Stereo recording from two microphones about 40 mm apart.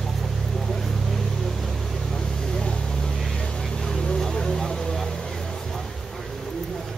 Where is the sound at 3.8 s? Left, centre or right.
Centre.